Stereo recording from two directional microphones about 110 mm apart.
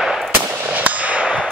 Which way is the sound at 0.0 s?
Centre (ahead or behind).